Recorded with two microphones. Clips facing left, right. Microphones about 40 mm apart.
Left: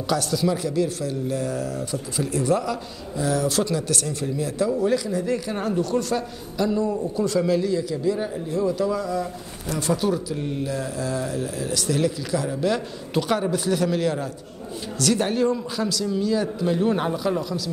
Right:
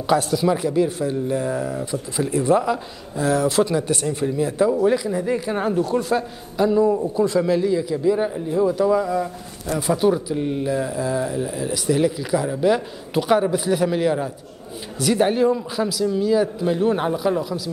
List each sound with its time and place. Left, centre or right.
0.0 s a man's voice: right